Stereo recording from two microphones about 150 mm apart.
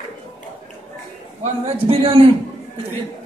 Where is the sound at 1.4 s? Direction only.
40° right (ahead or behind).